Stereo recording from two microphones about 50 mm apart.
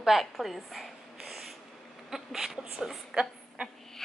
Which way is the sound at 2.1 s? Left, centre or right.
Centre.